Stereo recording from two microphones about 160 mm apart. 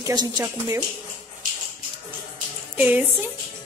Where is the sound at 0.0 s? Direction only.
25° right (ahead or behind).